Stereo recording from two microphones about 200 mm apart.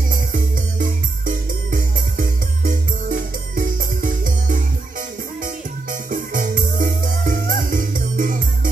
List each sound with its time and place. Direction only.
0.1 s music: 45° right (ahead or behind)